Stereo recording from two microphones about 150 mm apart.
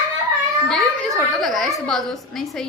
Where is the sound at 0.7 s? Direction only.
Centre (ahead or behind).